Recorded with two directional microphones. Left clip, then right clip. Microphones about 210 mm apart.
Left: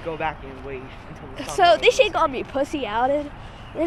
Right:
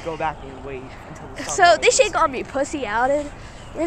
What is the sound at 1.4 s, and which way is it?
A woman's voice, 5° left (ahead or behind).